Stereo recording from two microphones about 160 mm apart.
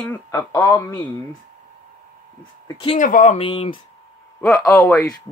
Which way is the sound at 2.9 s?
55° left (ahead or behind).